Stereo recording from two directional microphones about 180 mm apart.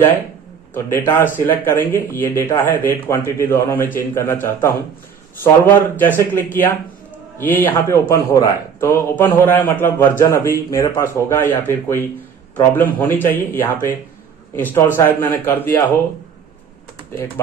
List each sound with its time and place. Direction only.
0.7 s a man's voice: 15° left (ahead or behind)